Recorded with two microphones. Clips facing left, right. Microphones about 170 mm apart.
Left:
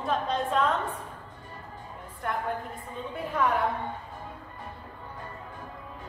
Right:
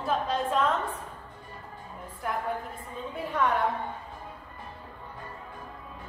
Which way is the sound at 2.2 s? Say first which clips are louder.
Even; 5° right (ahead or behind).